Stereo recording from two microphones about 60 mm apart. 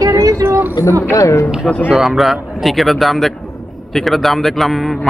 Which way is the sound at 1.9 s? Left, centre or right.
Centre.